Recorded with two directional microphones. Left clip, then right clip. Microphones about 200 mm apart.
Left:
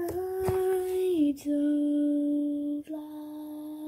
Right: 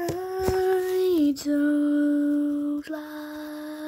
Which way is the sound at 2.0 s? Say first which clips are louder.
Right 4 dB; 65° right (ahead or behind).